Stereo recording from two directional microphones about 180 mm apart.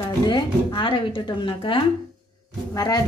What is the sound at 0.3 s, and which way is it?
A woman's voice, 30° left (ahead or behind).